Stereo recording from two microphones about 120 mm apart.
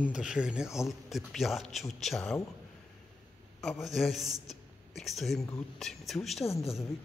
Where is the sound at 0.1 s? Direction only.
5° right (ahead or behind).